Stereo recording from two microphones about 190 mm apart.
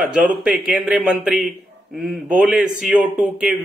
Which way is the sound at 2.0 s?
5° right (ahead or behind).